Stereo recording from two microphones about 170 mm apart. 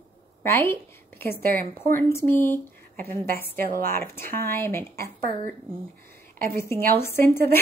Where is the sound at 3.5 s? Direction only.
55° right (ahead or behind).